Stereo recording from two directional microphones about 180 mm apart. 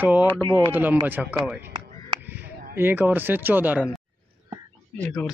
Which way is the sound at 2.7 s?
10° right (ahead or behind).